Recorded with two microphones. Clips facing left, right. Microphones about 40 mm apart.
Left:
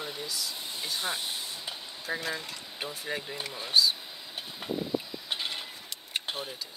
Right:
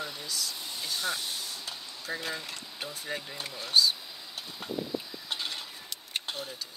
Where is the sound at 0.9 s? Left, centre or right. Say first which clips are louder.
Right 1 dB; left.